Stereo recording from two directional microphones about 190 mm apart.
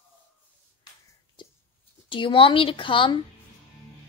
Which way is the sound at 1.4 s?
25° left (ahead or behind).